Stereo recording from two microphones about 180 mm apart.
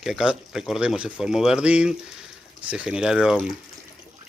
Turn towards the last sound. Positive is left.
turn(degrees=-5)  # may be behind; listen again after turning